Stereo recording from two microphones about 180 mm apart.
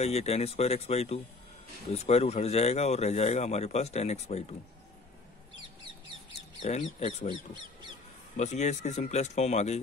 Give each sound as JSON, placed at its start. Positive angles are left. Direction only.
{"t": 0.0, "sound": "speech", "side_deg": 35}
{"t": 6.6, "sound": "speech", "side_deg": 40}
{"t": 8.4, "sound": "speech", "side_deg": 40}